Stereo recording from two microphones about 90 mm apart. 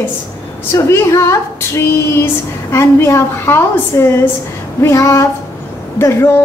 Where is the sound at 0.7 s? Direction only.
35° left (ahead or behind).